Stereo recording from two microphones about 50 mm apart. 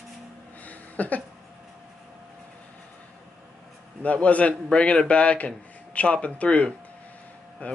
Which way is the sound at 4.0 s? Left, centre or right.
Left.